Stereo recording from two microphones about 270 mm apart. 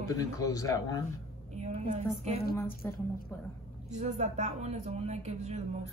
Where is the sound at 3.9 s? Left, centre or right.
Right.